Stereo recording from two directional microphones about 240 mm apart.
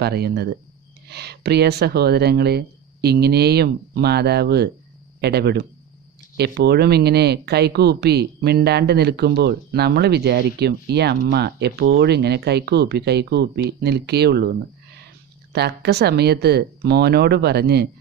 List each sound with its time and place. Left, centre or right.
0.0 s speech: right
15.5 s speech: right